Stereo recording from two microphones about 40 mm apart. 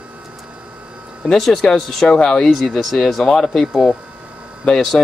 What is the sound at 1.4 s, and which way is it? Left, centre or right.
Speech, centre.